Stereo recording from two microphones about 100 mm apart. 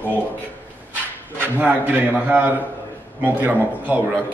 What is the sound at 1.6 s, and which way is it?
A man's voice, 15° right (ahead or behind).